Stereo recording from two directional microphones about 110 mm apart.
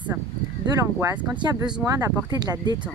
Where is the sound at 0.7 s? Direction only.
30° right (ahead or behind).